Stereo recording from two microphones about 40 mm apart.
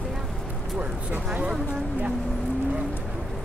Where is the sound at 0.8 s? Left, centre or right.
Right.